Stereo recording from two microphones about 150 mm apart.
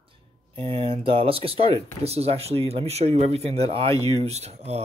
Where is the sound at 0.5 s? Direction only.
35° right (ahead or behind).